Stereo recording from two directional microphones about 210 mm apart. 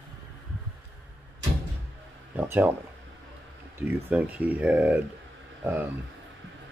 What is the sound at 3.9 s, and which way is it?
Speech, 10° right (ahead or behind).